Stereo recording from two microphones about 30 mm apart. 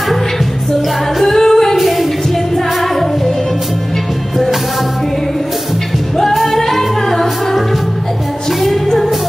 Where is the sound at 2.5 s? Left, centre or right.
Centre.